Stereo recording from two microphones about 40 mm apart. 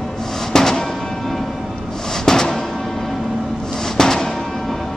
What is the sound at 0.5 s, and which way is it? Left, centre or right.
Music, centre.